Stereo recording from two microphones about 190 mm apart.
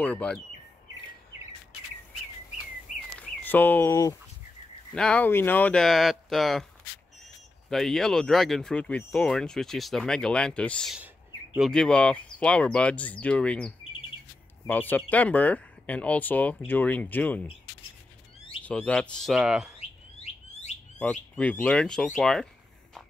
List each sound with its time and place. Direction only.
0.0 s speech: 5° left (ahead or behind)
3.2 s a sound: 10° left (ahead or behind)
4.9 s speech: 5° left (ahead or behind)
7.7 s speech: centre (ahead or behind)
18.6 s speech: 5° left (ahead or behind)
20.2 s alarm: 35° left (ahead or behind)
21.0 s speech: 5° left (ahead or behind)